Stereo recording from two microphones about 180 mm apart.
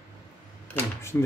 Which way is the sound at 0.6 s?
10° left (ahead or behind).